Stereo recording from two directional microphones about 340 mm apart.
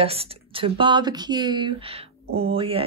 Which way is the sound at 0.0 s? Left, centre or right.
Centre.